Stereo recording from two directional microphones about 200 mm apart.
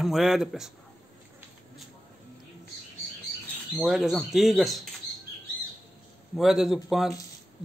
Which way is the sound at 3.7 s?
Centre (ahead or behind).